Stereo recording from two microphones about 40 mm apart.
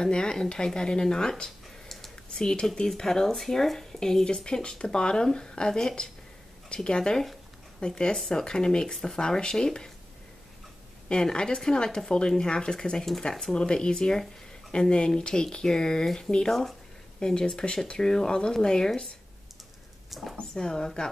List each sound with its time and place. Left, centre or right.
0.0 s speech: centre
1.9 s a sound: centre
2.3 s speech: left
11.1 s speech: left
20.1 s speech: centre
20.5 s speech: centre